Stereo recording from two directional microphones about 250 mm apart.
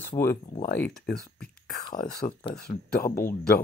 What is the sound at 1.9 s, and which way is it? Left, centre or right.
Speech, left.